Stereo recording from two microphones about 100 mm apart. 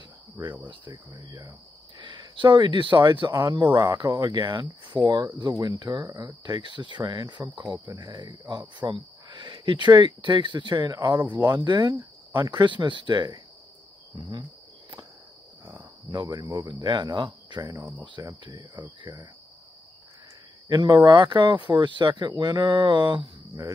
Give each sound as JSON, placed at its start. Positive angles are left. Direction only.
{"t": 0.7, "sound": "speech", "side_deg": -45}
{"t": 15.6, "sound": "cricket", "side_deg": -15}
{"t": 16.1, "sound": "speech", "side_deg": -45}
{"t": 18.2, "sound": "speech", "side_deg": -35}
{"t": 18.8, "sound": "speech", "side_deg": -50}
{"t": 20.6, "sound": "speech", "side_deg": -40}